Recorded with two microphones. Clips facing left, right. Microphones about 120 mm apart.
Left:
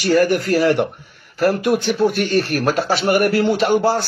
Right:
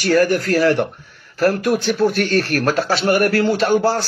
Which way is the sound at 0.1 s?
15° left (ahead or behind).